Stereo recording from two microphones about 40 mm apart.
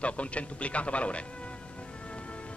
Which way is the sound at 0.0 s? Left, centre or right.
Left.